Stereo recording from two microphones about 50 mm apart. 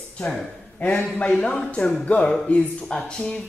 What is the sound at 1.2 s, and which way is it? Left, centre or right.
Speech, centre.